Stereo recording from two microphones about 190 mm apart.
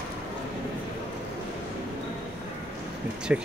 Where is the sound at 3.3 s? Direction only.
5° right (ahead or behind).